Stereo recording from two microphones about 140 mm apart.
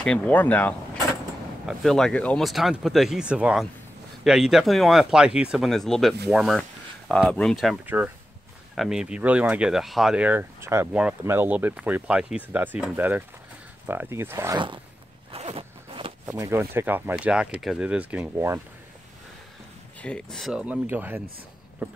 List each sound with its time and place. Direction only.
0.0 s speech: 5° left (ahead or behind)
7.8 s speech: 10° right (ahead or behind)
10.9 s speech: 5° right (ahead or behind)
15.3 s zipper: 45° right (ahead or behind)
16.3 s speech: 20° right (ahead or behind)
20.0 s speech: 5° left (ahead or behind)
20.6 s speech: 10° right (ahead or behind)